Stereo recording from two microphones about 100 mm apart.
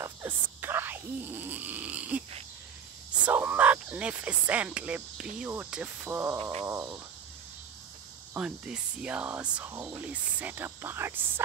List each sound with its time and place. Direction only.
0.0 s a sound: 25° right (ahead or behind)
3.3 s speech: 15° right (ahead or behind)
6.0 s speech: 25° right (ahead or behind)
6.7 s speech: 35° right (ahead or behind)
8.4 s speech: 10° right (ahead or behind)